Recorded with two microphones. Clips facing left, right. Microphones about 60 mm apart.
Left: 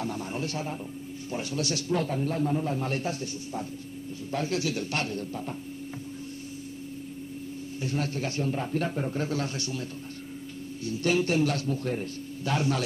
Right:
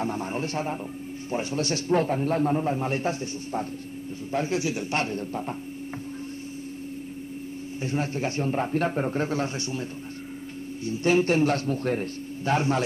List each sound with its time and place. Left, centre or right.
0.0 s a man's voice: right
2.7 s a man's voice: right
4.3 s a man's voice: right
7.8 s a man's voice: right
10.9 s a man's voice: right
12.5 s a man's voice: right